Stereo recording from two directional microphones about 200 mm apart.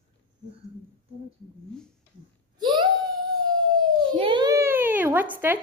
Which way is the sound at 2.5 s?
20° right (ahead or behind).